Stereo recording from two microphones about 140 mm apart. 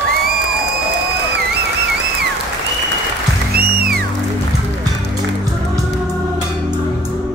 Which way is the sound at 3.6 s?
90° right.